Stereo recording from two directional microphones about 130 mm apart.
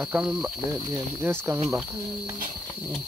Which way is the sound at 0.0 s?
10° right (ahead or behind).